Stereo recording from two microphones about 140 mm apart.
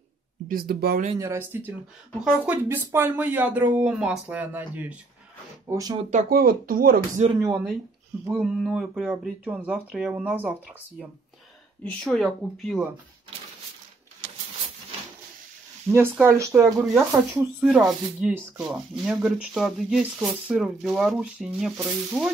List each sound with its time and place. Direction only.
0.5 s speech: 90° right
1.2 s speech: 20° right (ahead or behind)
5.7 s speech: 25° right (ahead or behind)
6.0 s speech: 75° right (ahead or behind)
7.3 s speech: 20° right (ahead or behind)
8.4 s speech: 5° right (ahead or behind)
11.8 s speech: 5° left (ahead or behind)
15.9 s speech: 15° right (ahead or behind)